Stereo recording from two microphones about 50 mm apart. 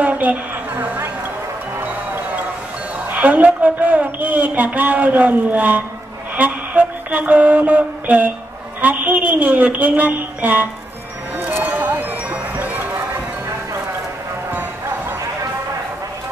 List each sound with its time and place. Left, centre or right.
0.0 s a sound: right
3.1 s a woman's voice: right
6.3 s mantra: right
8.8 s a woman's voice: right
11.6 s music: right